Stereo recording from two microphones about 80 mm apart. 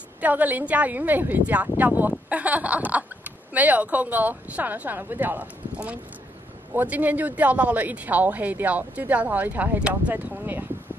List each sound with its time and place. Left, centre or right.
0.2 s speech: right
6.7 s speech: right